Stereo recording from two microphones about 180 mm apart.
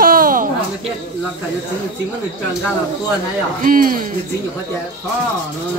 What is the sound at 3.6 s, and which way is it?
Speech, 50° right (ahead or behind).